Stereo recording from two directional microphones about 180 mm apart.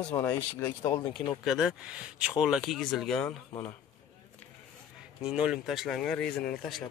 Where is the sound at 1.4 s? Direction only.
Centre (ahead or behind).